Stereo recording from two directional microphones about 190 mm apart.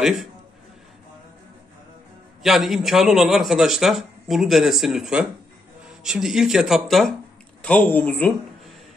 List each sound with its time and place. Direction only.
0.0 s a man's voice: centre (ahead or behind)
2.4 s a man's voice: centre (ahead or behind)